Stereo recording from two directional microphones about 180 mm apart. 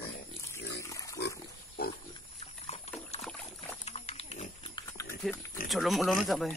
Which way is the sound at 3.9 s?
35° left (ahead or behind).